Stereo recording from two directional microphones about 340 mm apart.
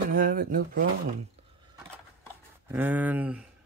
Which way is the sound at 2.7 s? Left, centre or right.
Centre.